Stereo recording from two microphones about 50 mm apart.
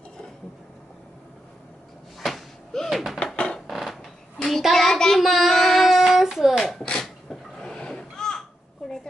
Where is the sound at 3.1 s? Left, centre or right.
Centre.